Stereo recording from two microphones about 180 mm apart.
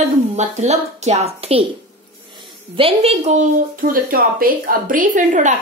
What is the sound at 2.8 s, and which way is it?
A woman's voice, 35° right (ahead or behind).